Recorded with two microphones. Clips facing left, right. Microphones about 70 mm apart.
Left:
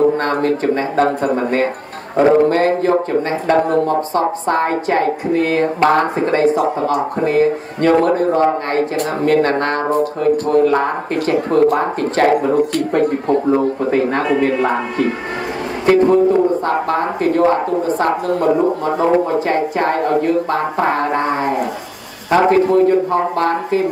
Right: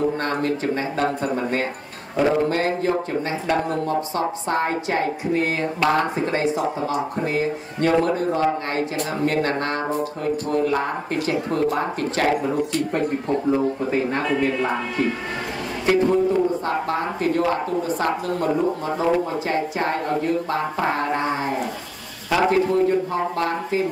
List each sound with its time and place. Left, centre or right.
0.0 s speech: left
16.3 s speech: left